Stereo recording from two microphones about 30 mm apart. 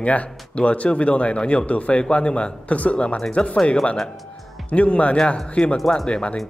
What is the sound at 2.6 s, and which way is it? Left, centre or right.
Speech, left.